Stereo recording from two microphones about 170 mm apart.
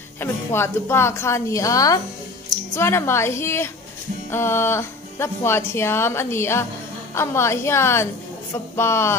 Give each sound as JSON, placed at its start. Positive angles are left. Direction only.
{"t": 0.2, "sound": "speech", "side_deg": 15}